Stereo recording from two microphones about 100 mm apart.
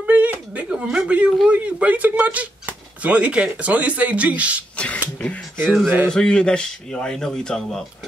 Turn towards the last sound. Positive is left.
turn(degrees=5)  # may be behind; listen again after turning